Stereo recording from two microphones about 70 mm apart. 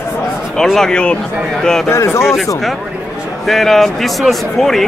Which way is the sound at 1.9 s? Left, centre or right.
Left.